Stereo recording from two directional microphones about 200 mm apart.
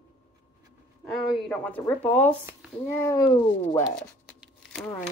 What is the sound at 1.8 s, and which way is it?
Speech, 10° left (ahead or behind).